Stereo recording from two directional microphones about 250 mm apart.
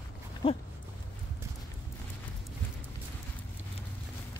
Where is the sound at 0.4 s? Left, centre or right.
Left.